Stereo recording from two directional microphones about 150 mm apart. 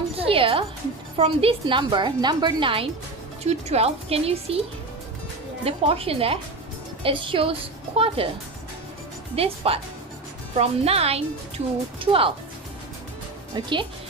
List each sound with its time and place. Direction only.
0.1 s music: 40° right (ahead or behind)
1.1 s speech: 40° right (ahead or behind)
5.7 s speech: 40° right (ahead or behind)
9.3 s speech: 40° right (ahead or behind)